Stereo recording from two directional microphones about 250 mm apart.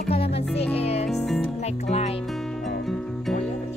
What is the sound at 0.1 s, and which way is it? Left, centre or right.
Music, left.